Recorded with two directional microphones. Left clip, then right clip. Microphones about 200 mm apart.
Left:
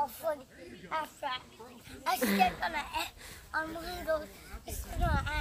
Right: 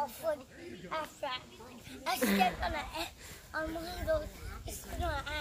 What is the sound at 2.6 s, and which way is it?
Speech, 30° left (ahead or behind).